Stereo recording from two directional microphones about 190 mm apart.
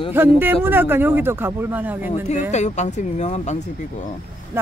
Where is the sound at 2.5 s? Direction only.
40° left (ahead or behind).